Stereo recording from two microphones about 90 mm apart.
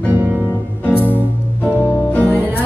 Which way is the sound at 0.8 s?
20° left (ahead or behind).